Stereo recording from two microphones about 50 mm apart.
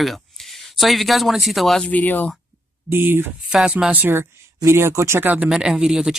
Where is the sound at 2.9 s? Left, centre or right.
Right.